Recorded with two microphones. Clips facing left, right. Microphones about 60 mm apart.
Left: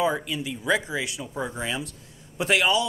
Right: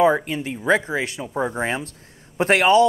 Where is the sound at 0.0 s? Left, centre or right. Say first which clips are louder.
Right 7 dB; right.